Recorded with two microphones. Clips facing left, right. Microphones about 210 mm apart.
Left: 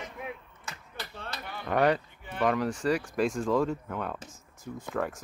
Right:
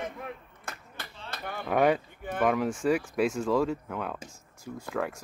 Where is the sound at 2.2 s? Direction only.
50° right (ahead or behind).